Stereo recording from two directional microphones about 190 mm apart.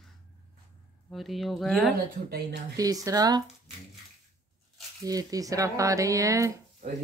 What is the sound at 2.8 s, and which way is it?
Speech, 20° right (ahead or behind).